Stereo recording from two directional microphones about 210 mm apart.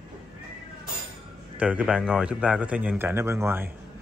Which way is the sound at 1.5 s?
5° right (ahead or behind).